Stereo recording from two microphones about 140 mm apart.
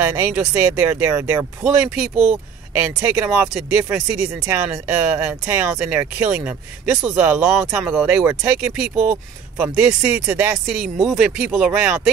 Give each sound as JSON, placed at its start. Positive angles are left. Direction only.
{"t": 0.0, "sound": "speech", "side_deg": -15}
{"t": 10.7, "sound": "speech", "side_deg": 0}